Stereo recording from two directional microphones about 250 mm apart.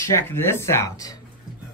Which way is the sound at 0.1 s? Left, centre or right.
Centre.